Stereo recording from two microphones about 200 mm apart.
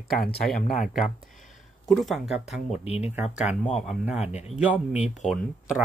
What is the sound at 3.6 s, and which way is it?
A man's voice, centre (ahead or behind).